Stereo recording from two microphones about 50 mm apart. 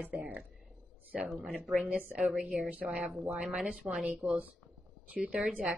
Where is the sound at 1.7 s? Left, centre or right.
Right.